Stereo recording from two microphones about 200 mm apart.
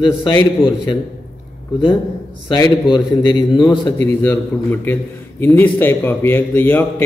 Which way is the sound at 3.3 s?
20° left (ahead or behind).